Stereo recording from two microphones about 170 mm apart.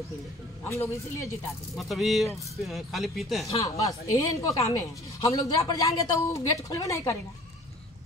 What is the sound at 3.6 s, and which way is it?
Speech, 20° left (ahead or behind).